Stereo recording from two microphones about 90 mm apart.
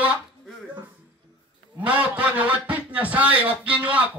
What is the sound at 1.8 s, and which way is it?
Speech, 15° right (ahead or behind).